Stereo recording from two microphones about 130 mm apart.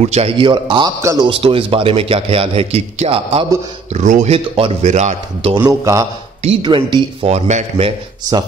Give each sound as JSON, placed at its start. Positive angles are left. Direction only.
{"t": 0.0, "sound": "speech", "side_deg": -55}
{"t": 0.4, "sound": "a man's voice", "side_deg": -40}
{"t": 1.0, "sound": "a man's voice", "side_deg": -30}
{"t": 1.3, "sound": "speech", "side_deg": -45}
{"t": 3.9, "sound": "speech", "side_deg": -65}
{"t": 4.3, "sound": "speech", "side_deg": -45}
{"t": 4.8, "sound": "speech", "side_deg": -60}
{"t": 5.7, "sound": "a man's voice", "side_deg": -25}
{"t": 6.6, "sound": "a man's voice", "side_deg": -35}
{"t": 7.2, "sound": "speech", "side_deg": -60}